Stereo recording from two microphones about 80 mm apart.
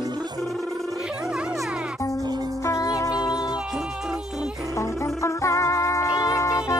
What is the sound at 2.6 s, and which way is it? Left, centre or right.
Music, left.